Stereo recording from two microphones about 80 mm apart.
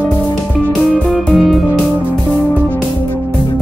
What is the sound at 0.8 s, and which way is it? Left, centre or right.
Music, centre.